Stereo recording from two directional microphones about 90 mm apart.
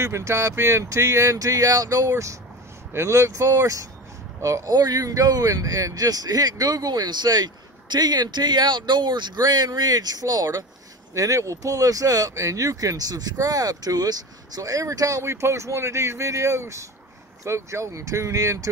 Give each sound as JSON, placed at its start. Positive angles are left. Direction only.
{"t": 0.0, "sound": "speech", "side_deg": -35}